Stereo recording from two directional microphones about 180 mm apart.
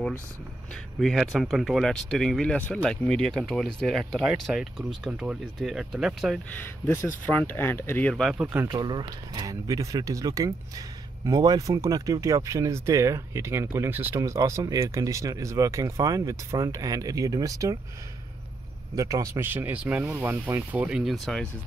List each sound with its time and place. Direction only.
0.9 s speech: centre (ahead or behind)
6.6 s speech: 15° left (ahead or behind)
8.5 s speech: 20° right (ahead or behind)
18.9 s speech: 20° right (ahead or behind); by 21.5 s centre (ahead or behind)